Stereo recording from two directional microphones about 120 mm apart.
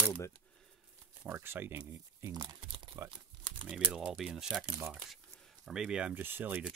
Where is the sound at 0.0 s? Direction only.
20° left (ahead or behind).